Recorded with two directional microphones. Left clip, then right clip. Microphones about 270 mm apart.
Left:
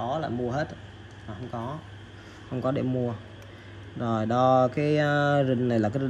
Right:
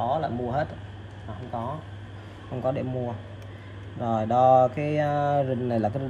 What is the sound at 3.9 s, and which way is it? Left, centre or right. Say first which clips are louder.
Mantra: right 3 dB; centre.